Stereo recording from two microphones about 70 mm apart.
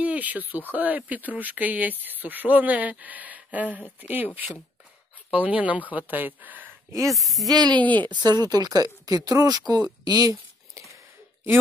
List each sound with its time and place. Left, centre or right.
0.0 s speech: right
5.3 s speech: right
7.1 s speech: centre
7.4 s speech: right
7.8 s a woman's voice: left
8.1 s speech: right